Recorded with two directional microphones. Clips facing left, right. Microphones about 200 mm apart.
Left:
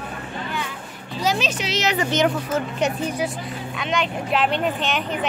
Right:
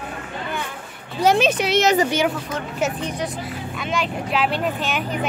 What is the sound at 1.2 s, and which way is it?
Speech, 55° right (ahead or behind).